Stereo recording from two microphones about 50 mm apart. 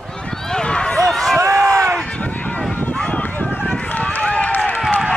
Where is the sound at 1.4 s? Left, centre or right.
Right.